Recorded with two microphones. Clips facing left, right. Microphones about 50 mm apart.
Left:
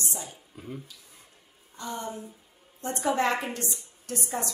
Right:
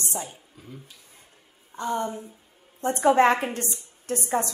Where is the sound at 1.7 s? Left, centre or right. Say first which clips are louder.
Right 7 dB; right.